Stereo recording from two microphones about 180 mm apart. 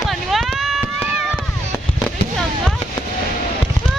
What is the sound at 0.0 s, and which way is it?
Chop, centre (ahead or behind).